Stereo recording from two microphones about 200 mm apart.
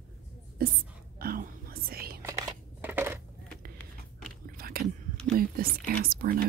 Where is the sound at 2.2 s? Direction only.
15° right (ahead or behind).